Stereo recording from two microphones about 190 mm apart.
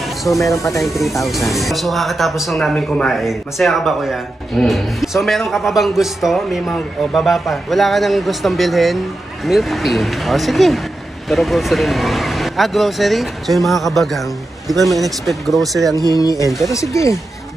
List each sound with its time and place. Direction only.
0.0 s music: centre (ahead or behind)
0.4 s speech: 15° left (ahead or behind)
0.8 s speech: centre (ahead or behind)
15.9 s speech: 20° right (ahead or behind)
16.2 s speech: 20° left (ahead or behind)